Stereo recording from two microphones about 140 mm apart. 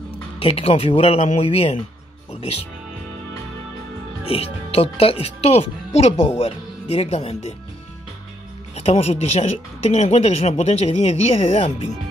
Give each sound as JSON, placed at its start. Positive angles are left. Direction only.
{"t": 0.4, "sound": "speech", "side_deg": 40}
{"t": 4.7, "sound": "speech", "side_deg": 45}
{"t": 8.7, "sound": "speech", "side_deg": 45}